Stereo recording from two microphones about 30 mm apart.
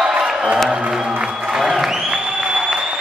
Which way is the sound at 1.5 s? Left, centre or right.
Centre.